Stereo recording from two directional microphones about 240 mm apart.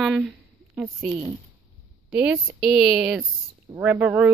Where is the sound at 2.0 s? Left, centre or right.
Centre.